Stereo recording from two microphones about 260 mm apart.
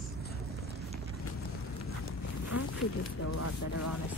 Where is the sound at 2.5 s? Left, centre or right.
Left.